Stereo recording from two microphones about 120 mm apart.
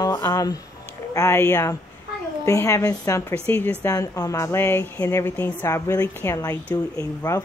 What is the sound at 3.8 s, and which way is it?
A woman's voice, 30° left (ahead or behind).